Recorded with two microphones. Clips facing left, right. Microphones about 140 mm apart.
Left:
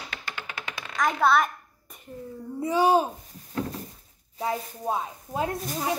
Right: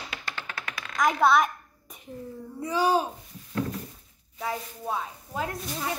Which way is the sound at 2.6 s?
25° left (ahead or behind).